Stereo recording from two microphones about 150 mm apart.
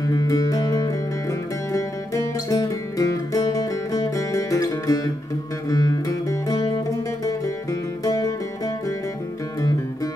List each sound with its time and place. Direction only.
0.0 s music: 25° left (ahead or behind)
8.0 s music: 25° left (ahead or behind)